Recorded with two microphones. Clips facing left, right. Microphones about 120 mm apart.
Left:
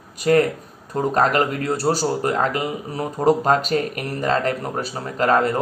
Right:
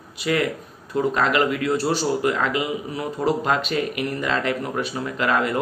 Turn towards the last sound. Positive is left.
turn(degrees=40)  # may be behind; listen again after turning